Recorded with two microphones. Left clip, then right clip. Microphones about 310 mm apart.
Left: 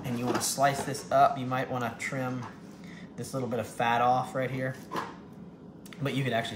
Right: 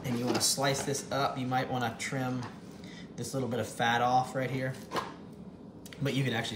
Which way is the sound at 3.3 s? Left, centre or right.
Centre.